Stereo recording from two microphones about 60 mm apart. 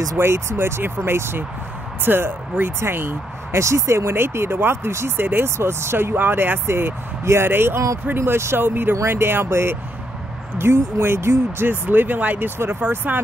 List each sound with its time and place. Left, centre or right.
0.2 s speech: right
3.5 s speech: right
6.1 s speech: right